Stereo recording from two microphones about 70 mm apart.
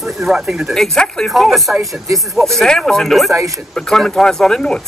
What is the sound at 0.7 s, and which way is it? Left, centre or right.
Speech, centre.